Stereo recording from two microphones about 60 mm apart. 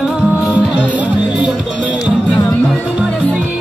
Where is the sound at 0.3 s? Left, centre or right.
Right.